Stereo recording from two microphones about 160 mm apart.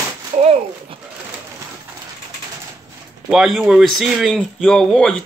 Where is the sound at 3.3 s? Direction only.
Centre (ahead or behind).